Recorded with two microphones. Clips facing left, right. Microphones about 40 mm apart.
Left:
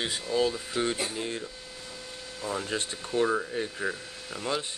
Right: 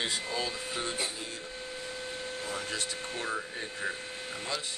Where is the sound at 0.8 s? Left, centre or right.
Left.